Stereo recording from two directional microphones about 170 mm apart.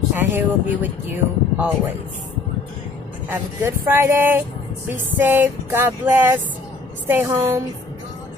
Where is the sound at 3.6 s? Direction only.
15° right (ahead or behind).